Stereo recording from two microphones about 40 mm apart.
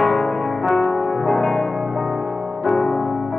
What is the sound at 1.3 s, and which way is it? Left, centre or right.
Music, centre.